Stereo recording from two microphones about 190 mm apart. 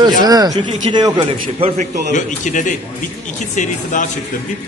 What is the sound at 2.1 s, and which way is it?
A man's voice, 40° left (ahead or behind).